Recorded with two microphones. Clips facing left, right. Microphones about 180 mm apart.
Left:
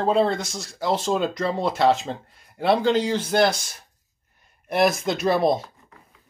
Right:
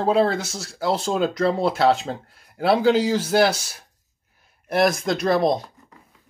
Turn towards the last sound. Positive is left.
turn(degrees=5)  # may be behind; listen again after turning